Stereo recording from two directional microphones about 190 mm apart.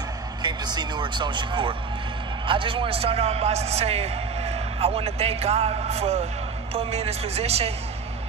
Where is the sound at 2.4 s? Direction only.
25° right (ahead or behind).